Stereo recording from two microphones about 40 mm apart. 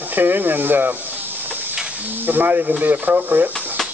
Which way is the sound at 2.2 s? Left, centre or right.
Right.